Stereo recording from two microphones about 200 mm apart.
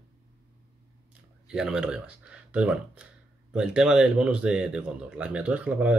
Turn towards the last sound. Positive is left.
turn(degrees=-5)  # may be behind; listen again after turning